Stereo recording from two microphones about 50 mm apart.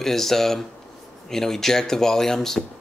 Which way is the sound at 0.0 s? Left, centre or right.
Centre.